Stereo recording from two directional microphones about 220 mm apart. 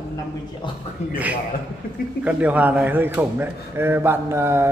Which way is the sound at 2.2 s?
5° right (ahead or behind).